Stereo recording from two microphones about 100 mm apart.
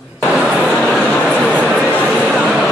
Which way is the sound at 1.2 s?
10° left (ahead or behind).